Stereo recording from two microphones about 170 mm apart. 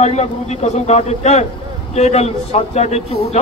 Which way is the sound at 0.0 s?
40° left (ahead or behind).